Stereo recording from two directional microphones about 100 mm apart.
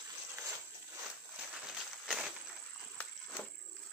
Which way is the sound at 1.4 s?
5° right (ahead or behind).